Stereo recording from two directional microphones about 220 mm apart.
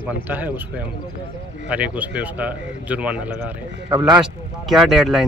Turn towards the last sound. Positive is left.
turn(degrees=0)  # may be behind; listen again after turning